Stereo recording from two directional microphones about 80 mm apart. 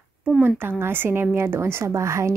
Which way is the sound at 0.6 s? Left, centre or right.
Right.